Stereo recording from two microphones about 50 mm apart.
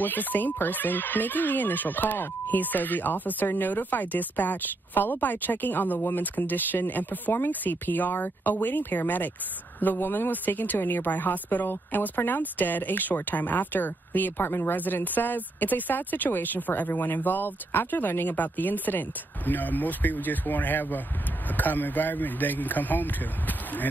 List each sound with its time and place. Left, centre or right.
0.0 s a woman's voice: left